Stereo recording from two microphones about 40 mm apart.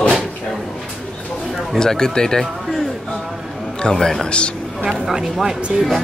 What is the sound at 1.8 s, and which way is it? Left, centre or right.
Speech, centre.